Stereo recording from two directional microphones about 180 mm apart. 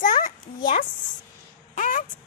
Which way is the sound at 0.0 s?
45° left (ahead or behind).